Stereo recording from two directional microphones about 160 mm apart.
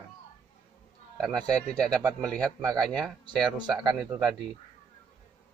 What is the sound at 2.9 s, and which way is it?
Speech, centre (ahead or behind).